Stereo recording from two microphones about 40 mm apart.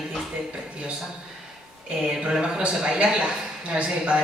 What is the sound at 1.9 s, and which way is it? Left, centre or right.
A woman's voice, right.